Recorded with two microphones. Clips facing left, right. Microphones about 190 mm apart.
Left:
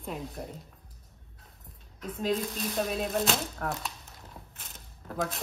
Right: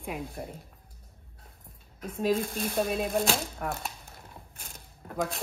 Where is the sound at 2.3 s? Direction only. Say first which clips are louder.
Right 2 dB; 50° right (ahead or behind).